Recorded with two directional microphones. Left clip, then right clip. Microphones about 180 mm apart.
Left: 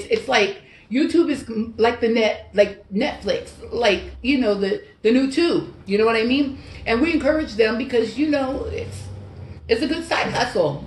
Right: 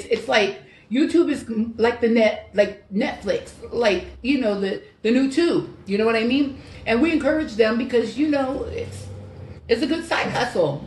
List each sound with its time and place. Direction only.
0.1 s speech: 15° left (ahead or behind)